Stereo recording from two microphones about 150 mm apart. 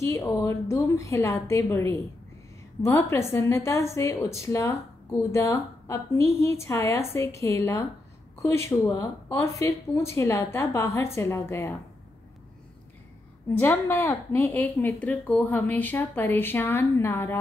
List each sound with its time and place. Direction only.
0.0 s a woman's voice: 20° left (ahead or behind)
13.6 s a woman's voice: 15° left (ahead or behind)